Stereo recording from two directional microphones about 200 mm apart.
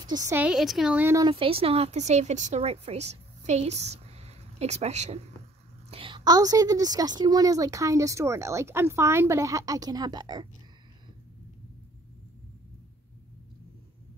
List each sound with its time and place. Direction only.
0.0 s a woman's voice: 20° right (ahead or behind)
1.3 s a woman's voice: 25° right (ahead or behind)